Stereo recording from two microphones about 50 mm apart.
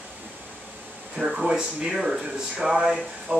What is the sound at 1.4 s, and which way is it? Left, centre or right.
Speech, centre.